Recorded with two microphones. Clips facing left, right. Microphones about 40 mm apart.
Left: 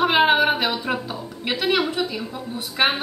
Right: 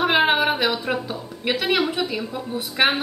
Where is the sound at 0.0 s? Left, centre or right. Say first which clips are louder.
Left 1 dB; centre.